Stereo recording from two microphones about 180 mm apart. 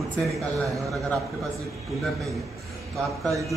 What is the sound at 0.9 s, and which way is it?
A man's voice, centre (ahead or behind).